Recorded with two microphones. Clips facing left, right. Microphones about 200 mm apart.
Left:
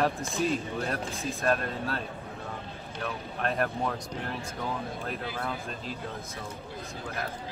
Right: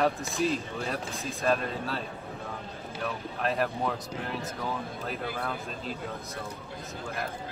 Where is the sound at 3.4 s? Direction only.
Centre (ahead or behind).